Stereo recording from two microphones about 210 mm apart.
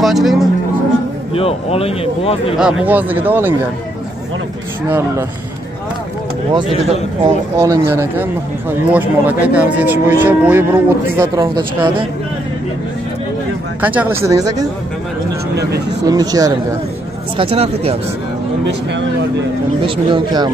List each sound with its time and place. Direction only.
0.0 s speech: centre (ahead or behind)
1.3 s speech: 30° left (ahead or behind)
2.5 s speech: 5° right (ahead or behind)
4.8 s speech: 10° right (ahead or behind)
6.5 s speech: 30° right (ahead or behind)
7.6 s speech: 15° right (ahead or behind)
13.7 s speech: 10° right (ahead or behind)
15.5 s speech: 50° right (ahead or behind)
16.1 s speech: 20° right (ahead or behind)
19.8 s speech: 25° right (ahead or behind)